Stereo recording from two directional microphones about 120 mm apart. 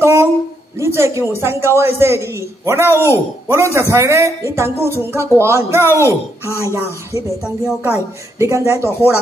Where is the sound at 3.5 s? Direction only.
20° right (ahead or behind).